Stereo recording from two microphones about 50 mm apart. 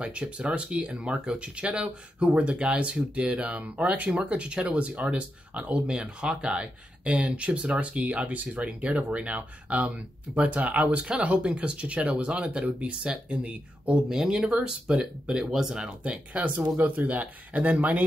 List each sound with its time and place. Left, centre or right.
0.0 s speech: right
14.0 s speech: centre
16.0 s speech: right